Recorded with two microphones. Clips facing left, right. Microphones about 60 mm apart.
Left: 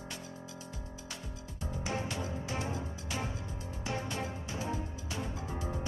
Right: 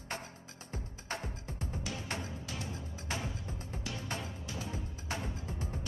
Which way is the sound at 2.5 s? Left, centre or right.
Left.